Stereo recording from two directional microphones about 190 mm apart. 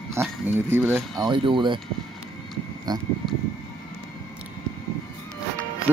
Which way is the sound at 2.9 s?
20° right (ahead or behind).